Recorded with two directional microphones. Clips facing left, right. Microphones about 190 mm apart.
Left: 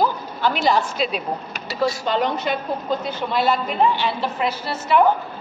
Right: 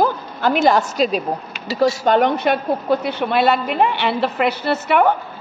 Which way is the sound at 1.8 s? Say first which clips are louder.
Right 6 dB; 55° right (ahead or behind).